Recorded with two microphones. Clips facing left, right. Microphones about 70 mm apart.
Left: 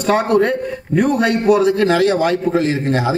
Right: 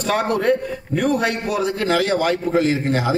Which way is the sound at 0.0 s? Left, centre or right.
Centre.